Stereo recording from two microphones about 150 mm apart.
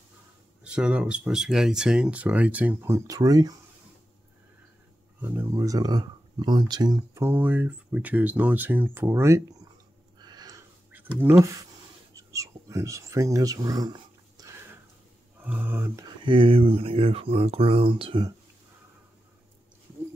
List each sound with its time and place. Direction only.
0.7 s speech: 5° right (ahead or behind); by 3.5 s 25° right (ahead or behind)
5.4 s speech: 20° right (ahead or behind)
7.2 s speech: 10° right (ahead or behind)
10.1 s a sound: 30° right (ahead or behind)
10.9 s speech: 10° right (ahead or behind); by 14.5 s 25° right (ahead or behind)
15.4 s a sound: 15° right (ahead or behind)
16.3 s speech: 35° right (ahead or behind)